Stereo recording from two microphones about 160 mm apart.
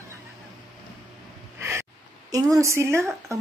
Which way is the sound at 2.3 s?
20° right (ahead or behind).